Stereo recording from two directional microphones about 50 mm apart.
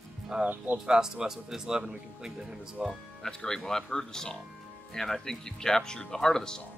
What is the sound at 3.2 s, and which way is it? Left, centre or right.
Speech, centre.